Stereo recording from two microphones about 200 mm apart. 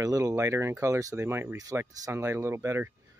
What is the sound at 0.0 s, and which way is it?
Speech, 15° right (ahead or behind).